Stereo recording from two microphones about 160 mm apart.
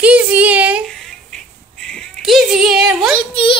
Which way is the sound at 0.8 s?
5° left (ahead or behind).